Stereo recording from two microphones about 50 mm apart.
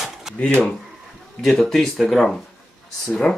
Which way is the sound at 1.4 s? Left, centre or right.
Centre.